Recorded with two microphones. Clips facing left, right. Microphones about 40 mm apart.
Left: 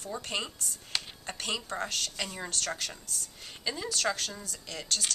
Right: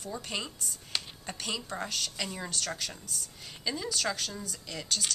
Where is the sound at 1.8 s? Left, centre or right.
Centre.